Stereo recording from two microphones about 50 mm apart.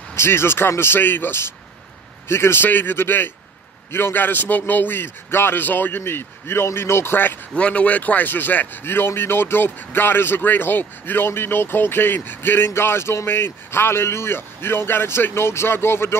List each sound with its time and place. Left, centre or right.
0.1 s a man's voice: left
7.5 s a man's voice: left